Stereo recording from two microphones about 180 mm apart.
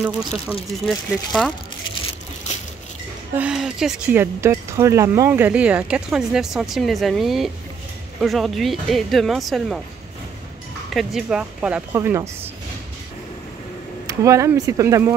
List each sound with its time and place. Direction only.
0.0 s speech: 5° right (ahead or behind)
3.3 s speech: 5° right (ahead or behind)
10.9 s speech: centre (ahead or behind)
14.0 s speech: 15° right (ahead or behind)